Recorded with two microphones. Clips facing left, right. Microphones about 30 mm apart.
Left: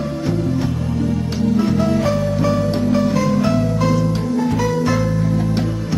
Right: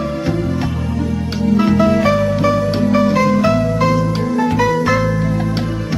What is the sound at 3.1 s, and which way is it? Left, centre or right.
Music, centre.